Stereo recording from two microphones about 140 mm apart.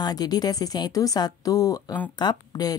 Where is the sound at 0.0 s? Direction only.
30° left (ahead or behind).